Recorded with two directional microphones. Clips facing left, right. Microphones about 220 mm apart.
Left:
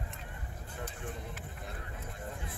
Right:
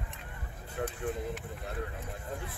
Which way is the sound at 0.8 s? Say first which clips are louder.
Right 9 dB; 65° right (ahead or behind).